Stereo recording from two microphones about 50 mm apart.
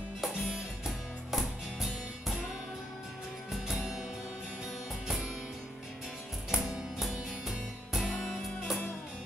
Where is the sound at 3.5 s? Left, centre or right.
Centre.